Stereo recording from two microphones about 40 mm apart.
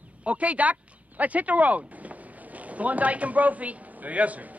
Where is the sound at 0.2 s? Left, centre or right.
Right.